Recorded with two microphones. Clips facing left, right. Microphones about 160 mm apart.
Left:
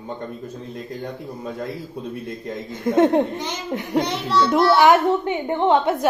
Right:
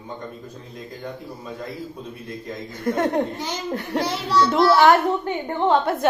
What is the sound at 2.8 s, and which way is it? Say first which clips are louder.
A woman's voice: left 5 dB; 25° left (ahead or behind).